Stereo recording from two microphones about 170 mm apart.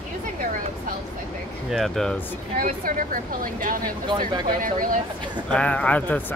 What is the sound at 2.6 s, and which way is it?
Speech, 55° right (ahead or behind).